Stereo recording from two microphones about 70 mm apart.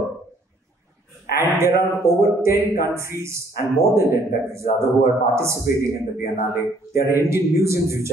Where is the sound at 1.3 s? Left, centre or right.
Right.